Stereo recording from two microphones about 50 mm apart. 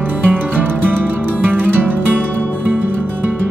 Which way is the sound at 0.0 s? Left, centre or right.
Right.